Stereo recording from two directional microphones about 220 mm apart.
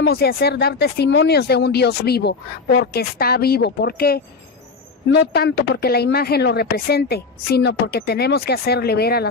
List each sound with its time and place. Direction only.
0.0 s speech: 45° left (ahead or behind)